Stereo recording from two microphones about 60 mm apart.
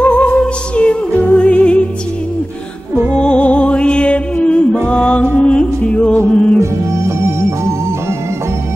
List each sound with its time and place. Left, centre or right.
0.0 s music: left
3.2 s music: centre
6.6 s music: right